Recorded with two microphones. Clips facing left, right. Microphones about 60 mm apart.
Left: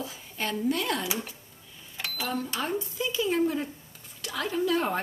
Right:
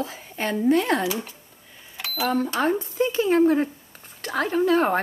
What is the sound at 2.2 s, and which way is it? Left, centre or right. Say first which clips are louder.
Speech: right 9 dB; right.